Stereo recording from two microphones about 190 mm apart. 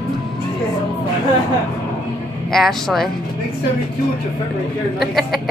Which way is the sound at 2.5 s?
Centre (ahead or behind).